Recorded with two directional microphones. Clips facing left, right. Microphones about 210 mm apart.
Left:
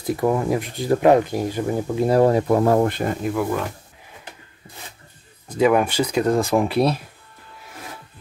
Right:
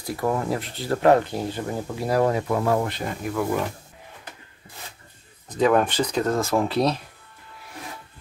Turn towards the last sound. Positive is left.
turn(degrees=10)  # may be behind; listen again after turning